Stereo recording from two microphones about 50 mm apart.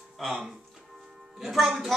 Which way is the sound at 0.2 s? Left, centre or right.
Centre.